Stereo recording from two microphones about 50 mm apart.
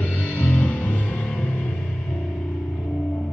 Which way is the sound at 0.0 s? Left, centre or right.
Left.